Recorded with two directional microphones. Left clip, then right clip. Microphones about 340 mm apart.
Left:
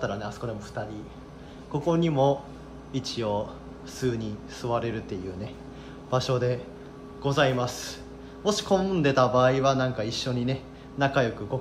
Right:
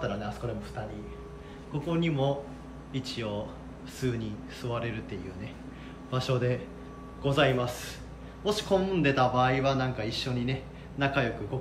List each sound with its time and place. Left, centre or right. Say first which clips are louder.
0.0 s a man's voice: left 2 dB; centre
1.7 s a man's voice: left 6 dB; centre